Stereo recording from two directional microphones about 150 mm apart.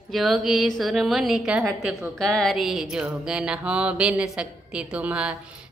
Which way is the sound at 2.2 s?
5° left (ahead or behind).